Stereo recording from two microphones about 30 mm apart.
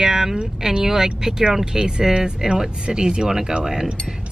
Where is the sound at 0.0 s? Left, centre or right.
Centre.